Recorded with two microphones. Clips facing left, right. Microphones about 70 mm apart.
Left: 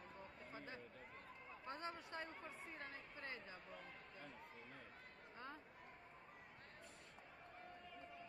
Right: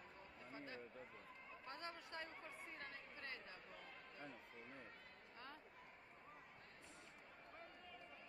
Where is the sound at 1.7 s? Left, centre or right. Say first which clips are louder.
Left 3 dB; left.